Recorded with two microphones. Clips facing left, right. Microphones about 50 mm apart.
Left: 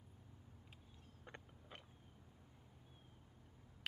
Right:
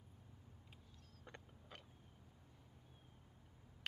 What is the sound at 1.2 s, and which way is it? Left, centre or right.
Biting, centre.